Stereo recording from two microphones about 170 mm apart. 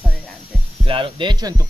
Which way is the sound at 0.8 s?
30° right (ahead or behind).